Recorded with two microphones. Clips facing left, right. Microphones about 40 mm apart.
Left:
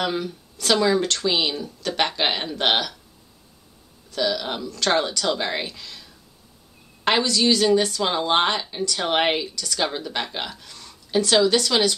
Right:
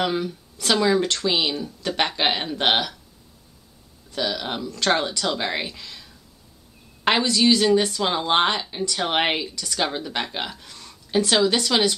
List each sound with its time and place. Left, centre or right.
0.0 s a woman's voice: centre
4.1 s a woman's voice: centre
4.9 s a woman's voice: centre
7.1 s a woman's voice: centre